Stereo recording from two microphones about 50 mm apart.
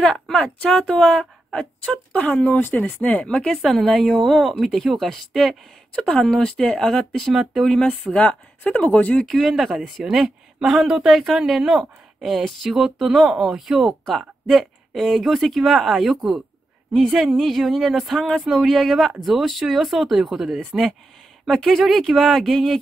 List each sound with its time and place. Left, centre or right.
0.0 s a woman's voice: centre
3.6 s speech: centre
5.9 s a woman's voice: centre
8.1 s speech: left
9.3 s speech: centre
17.4 s speech: centre